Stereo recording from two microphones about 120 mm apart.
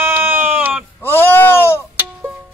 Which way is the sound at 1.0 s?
20° left (ahead or behind).